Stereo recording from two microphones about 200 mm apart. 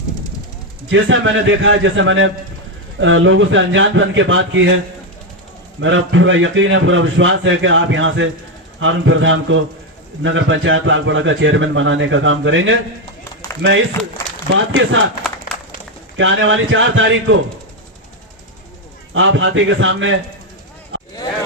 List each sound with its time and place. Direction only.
0.8 s a man's voice: 75° right (ahead or behind)
5.8 s a man's voice: 75° right (ahead or behind)
16.2 s a man's voice: 75° right (ahead or behind)
19.1 s a man's voice: 75° right (ahead or behind)
20.9 s a sound: 75° right (ahead or behind)